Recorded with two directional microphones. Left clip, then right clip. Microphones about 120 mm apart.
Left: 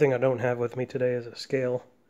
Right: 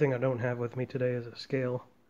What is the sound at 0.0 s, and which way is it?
Speech, 25° left (ahead or behind).